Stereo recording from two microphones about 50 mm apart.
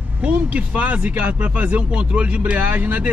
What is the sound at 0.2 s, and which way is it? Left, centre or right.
Speech, right.